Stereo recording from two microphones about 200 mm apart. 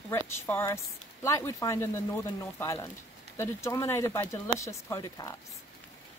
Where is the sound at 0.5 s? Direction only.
10° left (ahead or behind).